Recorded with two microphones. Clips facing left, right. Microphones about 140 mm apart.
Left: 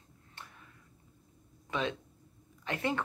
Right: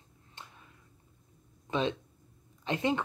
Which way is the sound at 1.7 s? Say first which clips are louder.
Right 4 dB; 25° right (ahead or behind).